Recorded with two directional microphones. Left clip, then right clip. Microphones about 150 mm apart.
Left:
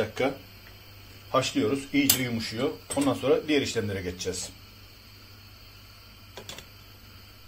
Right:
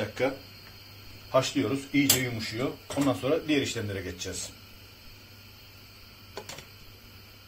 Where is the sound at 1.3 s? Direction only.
60° left (ahead or behind).